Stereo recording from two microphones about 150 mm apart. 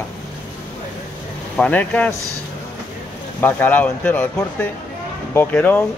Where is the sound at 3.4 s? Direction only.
10° left (ahead or behind).